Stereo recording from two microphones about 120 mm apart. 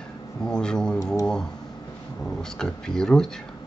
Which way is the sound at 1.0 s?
30° left (ahead or behind).